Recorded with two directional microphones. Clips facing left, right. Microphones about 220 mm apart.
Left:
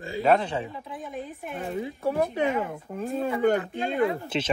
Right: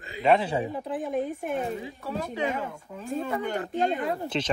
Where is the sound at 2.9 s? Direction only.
55° left (ahead or behind).